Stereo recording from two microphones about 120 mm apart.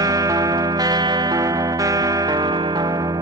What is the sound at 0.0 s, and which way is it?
Music, 30° right (ahead or behind).